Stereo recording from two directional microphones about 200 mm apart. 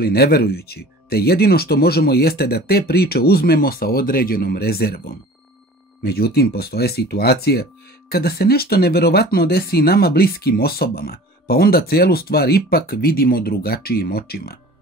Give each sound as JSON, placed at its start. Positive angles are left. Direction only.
{"t": 0.0, "sound": "speech", "side_deg": 50}